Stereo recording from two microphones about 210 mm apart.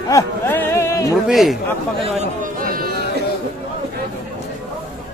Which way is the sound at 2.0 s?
35° right (ahead or behind).